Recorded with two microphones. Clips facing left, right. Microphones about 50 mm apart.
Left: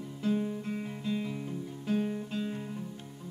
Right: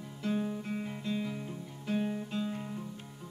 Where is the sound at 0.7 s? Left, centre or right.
Centre.